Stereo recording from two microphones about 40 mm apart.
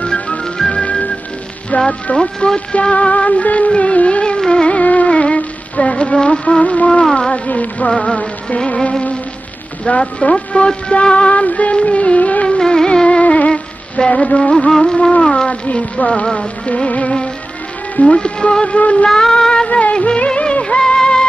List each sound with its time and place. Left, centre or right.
0.0 s music: left
1.9 s music: left
7.4 s music: left
7.9 s music: left
12.4 s music: centre
13.2 s music: left
13.5 s music: left
14.7 s music: centre
15.0 s music: left
15.4 s music: left
18.8 s music: left
19.0 s music: centre
19.7 s music of bollywood: left